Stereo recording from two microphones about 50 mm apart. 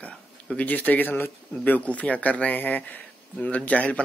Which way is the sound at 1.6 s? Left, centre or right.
Left.